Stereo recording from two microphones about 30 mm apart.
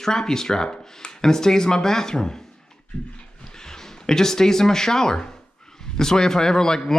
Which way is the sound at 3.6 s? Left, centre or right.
Centre.